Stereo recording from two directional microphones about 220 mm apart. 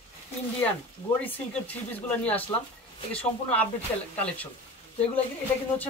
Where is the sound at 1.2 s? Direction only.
5° left (ahead or behind).